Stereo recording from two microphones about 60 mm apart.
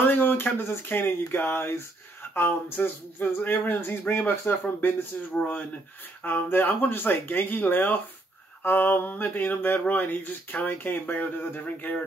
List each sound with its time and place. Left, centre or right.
0.0 s speech: left